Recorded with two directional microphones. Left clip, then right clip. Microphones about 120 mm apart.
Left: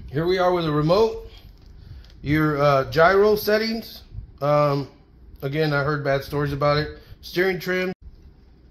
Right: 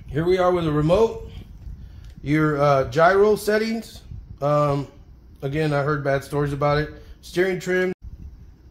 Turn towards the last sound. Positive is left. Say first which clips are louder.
# right 1 dB
turn(degrees=25)  # may be behind; listen again after turning